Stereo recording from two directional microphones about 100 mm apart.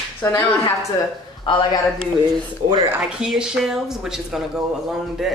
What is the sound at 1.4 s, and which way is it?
Speech, 55° left (ahead or behind).